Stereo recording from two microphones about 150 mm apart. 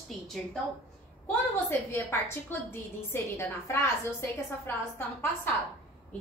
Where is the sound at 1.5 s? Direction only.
15° left (ahead or behind).